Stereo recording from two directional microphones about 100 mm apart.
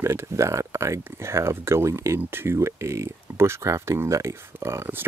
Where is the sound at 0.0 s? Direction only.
25° right (ahead or behind).